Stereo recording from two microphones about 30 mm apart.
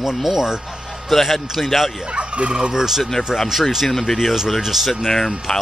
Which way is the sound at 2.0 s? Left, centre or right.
Right.